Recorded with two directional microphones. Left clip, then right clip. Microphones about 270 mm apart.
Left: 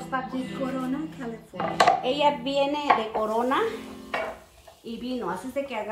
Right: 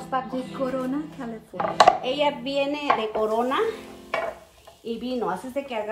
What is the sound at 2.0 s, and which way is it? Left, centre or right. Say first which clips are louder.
A woman's voice: left 1 dB; centre.